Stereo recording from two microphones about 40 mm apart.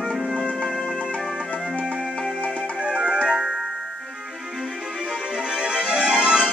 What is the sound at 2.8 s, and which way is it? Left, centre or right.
Music, right.